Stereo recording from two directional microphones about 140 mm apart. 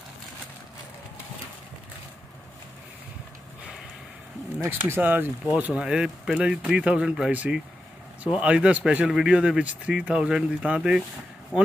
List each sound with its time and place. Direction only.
4.6 s speech: 15° right (ahead or behind)